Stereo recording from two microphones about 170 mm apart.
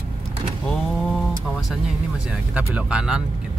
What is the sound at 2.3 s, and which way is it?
Speech, 5° right (ahead or behind).